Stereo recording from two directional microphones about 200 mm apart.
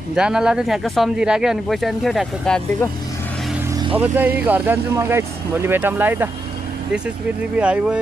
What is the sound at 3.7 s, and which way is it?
Vehicle, 20° right (ahead or behind).